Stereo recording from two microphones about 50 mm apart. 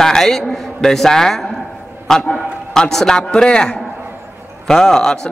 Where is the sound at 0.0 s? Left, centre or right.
Centre.